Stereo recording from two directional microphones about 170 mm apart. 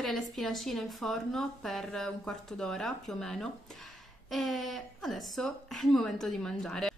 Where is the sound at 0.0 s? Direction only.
Centre (ahead or behind).